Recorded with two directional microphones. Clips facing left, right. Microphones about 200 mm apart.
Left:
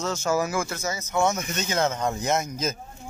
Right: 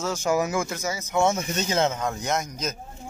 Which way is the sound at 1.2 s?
30° right (ahead or behind).